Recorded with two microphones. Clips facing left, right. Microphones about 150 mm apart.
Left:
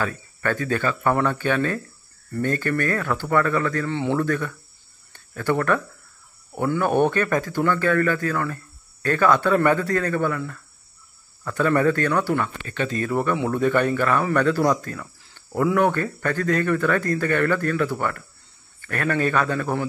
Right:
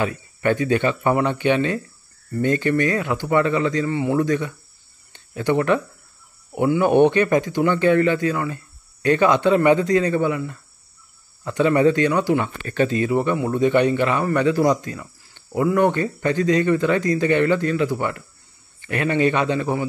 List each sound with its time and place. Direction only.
0.0 s speech: 20° right (ahead or behind)
3.8 s speech: 5° right (ahead or behind)
12.6 s speech: 35° right (ahead or behind)
13.1 s speech: 5° right (ahead or behind)
15.9 s speech: 15° right (ahead or behind)